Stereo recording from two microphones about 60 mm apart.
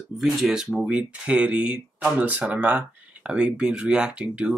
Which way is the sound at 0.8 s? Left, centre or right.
Right.